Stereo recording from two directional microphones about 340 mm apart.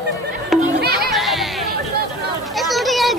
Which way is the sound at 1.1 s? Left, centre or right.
Centre.